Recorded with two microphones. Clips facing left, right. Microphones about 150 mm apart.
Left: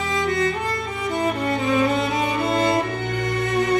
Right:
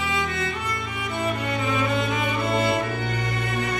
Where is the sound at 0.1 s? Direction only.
40° left (ahead or behind).